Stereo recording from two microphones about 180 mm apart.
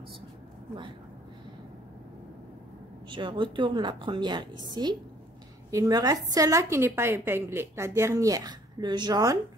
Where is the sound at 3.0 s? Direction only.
25° right (ahead or behind).